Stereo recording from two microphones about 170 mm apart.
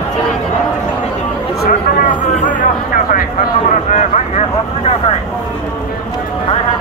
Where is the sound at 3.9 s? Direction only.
45° left (ahead or behind).